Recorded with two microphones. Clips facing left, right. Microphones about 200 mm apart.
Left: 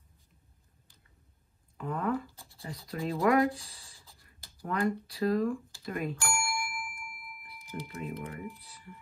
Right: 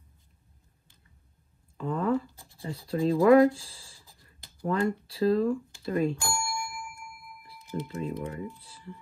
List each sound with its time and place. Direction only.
1.8 s speech: 30° right (ahead or behind)
5.9 s doorbell: 30° right (ahead or behind)
7.4 s speech: 25° right (ahead or behind)